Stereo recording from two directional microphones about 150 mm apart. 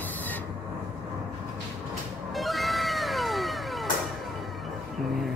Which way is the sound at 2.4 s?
Centre (ahead or behind).